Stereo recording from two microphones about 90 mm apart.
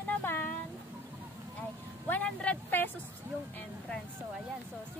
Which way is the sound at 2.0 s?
20° left (ahead or behind).